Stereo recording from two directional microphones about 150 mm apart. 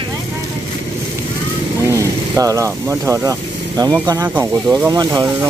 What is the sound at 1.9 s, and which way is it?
Speech, 20° right (ahead or behind).